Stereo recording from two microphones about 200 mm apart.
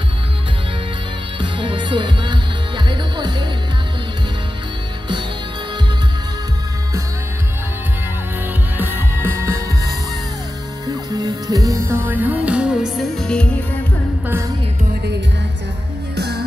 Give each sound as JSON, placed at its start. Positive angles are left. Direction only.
{"t": 1.4, "sound": "music", "side_deg": -25}
{"t": 8.7, "sound": "music", "side_deg": -10}
{"t": 11.1, "sound": "music", "side_deg": -20}
{"t": 16.2, "sound": "music", "side_deg": -55}